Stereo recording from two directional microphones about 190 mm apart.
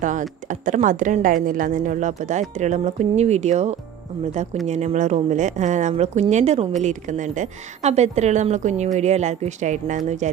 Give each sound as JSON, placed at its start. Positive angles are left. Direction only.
{"t": 0.0, "sound": "speech", "side_deg": -40}